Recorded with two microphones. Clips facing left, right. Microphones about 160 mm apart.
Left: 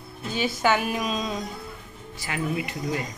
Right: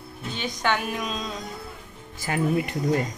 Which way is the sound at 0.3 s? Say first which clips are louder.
Left 3 dB; 5° left (ahead or behind).